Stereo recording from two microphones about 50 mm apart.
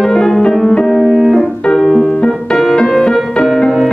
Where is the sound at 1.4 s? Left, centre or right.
Centre.